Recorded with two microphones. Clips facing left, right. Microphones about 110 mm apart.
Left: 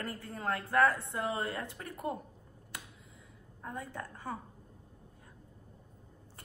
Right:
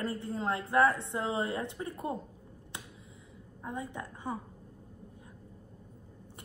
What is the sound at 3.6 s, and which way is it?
Speech, 20° right (ahead or behind).